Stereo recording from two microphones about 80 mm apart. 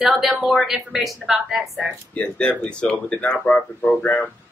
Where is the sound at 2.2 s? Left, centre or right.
Centre.